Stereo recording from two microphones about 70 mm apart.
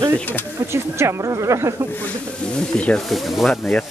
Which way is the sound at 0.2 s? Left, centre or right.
Left.